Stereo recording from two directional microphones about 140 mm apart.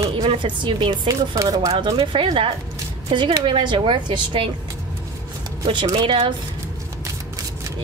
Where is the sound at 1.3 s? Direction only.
25° right (ahead or behind).